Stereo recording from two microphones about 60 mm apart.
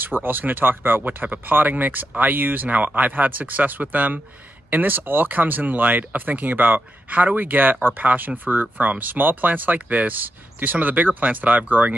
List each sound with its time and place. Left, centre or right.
0.0 s speech: right